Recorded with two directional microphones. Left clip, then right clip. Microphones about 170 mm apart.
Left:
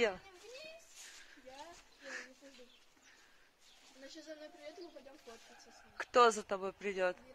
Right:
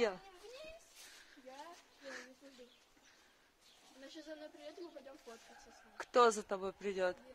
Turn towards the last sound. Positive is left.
turn(degrees=10)  # may be behind; listen again after turning